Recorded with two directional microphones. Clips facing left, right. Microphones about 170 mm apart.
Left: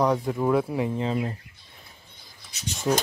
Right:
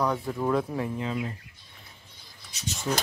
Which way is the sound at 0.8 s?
30° left (ahead or behind).